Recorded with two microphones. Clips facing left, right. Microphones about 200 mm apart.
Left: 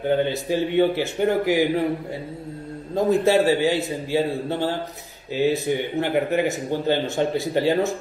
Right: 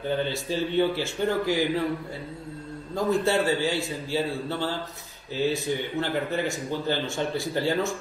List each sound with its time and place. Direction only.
0.1 s speech: 20° left (ahead or behind)
2.9 s speech: 20° left (ahead or behind)